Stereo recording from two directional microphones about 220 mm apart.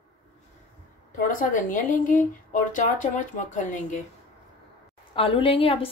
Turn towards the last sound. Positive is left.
turn(degrees=25)  # may be behind; listen again after turning